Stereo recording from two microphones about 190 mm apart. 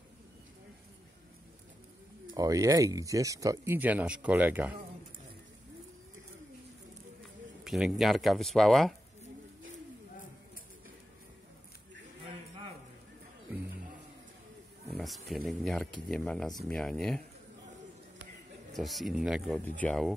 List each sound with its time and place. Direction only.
2.3 s speech: 15° right (ahead or behind)
7.6 s speech: centre (ahead or behind)
15.0 s speech: centre (ahead or behind)
18.7 s speech: centre (ahead or behind)